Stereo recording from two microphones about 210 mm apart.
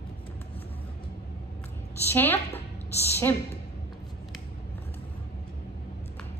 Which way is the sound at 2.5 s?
30° left (ahead or behind).